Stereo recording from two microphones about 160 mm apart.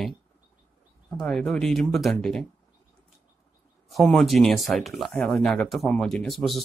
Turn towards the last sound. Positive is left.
turn(degrees=0)  # may be behind; listen again after turning